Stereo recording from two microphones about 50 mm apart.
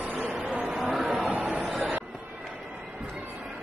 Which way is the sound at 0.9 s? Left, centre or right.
Centre.